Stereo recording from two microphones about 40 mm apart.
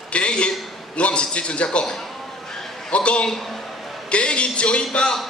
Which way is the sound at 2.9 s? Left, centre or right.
Left.